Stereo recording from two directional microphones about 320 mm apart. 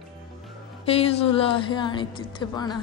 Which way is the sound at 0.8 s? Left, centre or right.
Centre.